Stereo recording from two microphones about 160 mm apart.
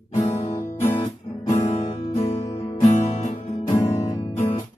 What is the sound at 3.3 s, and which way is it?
Music, 35° left (ahead or behind).